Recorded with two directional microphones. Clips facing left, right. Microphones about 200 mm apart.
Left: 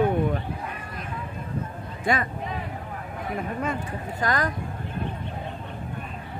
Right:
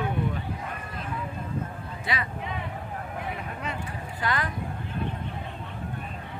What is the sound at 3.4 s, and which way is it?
Speech, 50° left (ahead or behind).